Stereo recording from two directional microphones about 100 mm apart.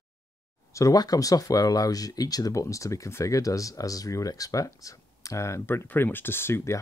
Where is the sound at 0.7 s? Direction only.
35° left (ahead or behind).